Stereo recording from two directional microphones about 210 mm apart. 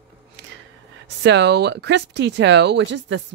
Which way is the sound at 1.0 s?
55° right (ahead or behind).